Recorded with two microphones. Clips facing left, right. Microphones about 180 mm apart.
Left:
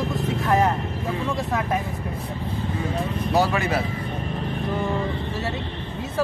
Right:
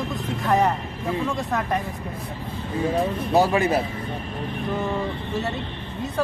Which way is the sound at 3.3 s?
15° right (ahead or behind).